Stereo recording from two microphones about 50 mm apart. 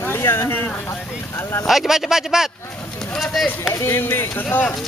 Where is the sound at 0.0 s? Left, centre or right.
Left.